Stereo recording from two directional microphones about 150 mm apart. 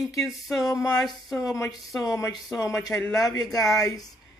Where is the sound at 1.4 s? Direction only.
25° left (ahead or behind).